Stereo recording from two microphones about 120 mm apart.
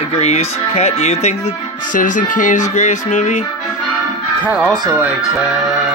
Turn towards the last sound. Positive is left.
turn(degrees=-15)  # may be behind; listen again after turning